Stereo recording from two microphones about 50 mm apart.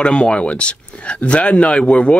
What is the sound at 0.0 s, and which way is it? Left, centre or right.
Speech, centre.